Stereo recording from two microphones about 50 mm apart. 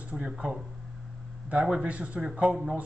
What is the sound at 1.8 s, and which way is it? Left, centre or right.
Speech, right.